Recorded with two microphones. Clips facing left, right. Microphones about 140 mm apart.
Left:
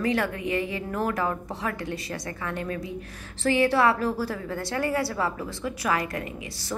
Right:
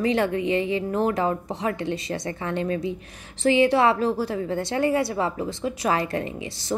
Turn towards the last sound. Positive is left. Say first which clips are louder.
# right 5 dB
turn(degrees=-25)  # may be behind; listen again after turning